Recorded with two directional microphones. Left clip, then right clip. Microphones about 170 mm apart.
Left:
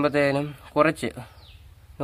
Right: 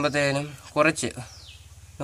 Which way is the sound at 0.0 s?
45° left (ahead or behind).